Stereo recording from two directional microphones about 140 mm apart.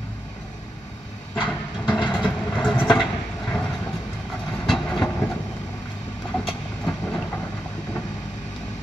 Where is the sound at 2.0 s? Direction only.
5° right (ahead or behind).